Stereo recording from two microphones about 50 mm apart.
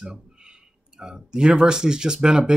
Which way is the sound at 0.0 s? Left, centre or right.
Centre.